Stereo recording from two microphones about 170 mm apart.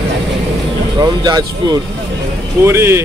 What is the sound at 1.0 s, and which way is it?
Speech, 25° right (ahead or behind).